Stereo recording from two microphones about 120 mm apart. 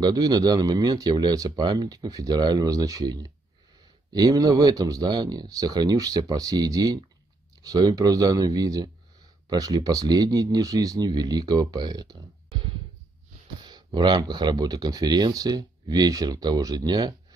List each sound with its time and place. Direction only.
0.0 s speech: 35° right (ahead or behind)